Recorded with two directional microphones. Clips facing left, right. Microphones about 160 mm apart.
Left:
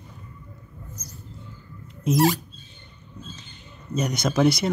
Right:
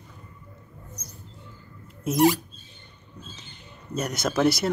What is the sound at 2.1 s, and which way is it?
Rodents, 5° right (ahead or behind).